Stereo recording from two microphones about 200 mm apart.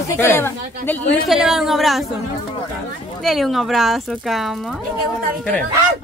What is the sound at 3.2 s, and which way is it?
Speech, centre (ahead or behind).